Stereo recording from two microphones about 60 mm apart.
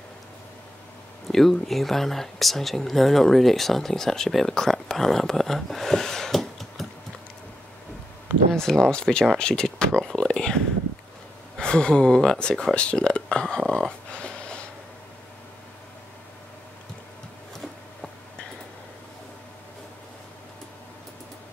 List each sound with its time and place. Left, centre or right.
1.2 s speech: centre
8.5 s speech: centre
13.6 s a sound: centre